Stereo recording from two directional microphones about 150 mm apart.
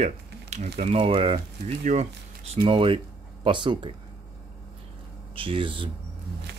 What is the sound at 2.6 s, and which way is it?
Speech, 35° right (ahead or behind).